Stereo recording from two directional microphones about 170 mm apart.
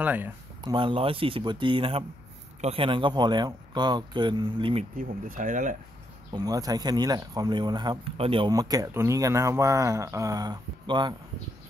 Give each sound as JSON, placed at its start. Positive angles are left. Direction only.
{"t": 0.0, "sound": "speech", "side_deg": -10}
{"t": 0.6, "sound": "speech", "side_deg": -30}
{"t": 4.9, "sound": "speech", "side_deg": -50}
{"t": 6.3, "sound": "speech", "side_deg": -20}
{"t": 8.5, "sound": "speech", "side_deg": -20}